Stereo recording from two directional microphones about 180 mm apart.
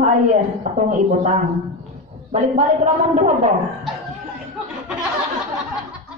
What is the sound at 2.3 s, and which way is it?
A woman's voice, 40° right (ahead or behind).